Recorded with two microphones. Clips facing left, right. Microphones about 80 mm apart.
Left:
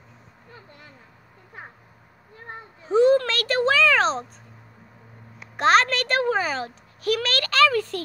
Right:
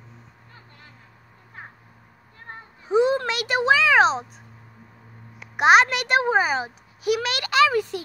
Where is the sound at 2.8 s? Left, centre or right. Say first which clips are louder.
Left 3 dB; centre.